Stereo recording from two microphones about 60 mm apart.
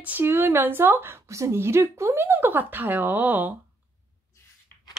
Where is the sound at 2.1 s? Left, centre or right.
Right.